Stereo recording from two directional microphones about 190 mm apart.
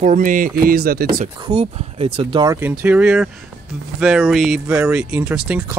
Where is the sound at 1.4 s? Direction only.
35° right (ahead or behind).